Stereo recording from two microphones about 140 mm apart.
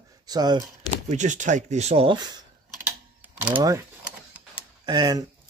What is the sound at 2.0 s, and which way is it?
Speech, 30° right (ahead or behind).